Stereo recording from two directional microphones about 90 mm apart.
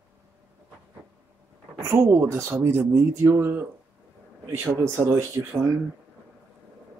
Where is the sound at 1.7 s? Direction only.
30° right (ahead or behind).